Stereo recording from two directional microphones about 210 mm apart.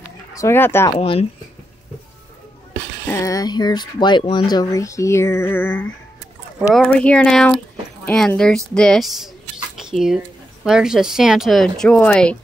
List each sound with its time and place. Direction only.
0.3 s speech: 15° left (ahead or behind)
0.9 s speech: 25° left (ahead or behind)
3.1 s speech: 15° left (ahead or behind)